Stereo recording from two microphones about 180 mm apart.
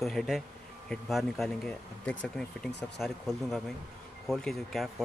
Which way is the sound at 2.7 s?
70° left (ahead or behind).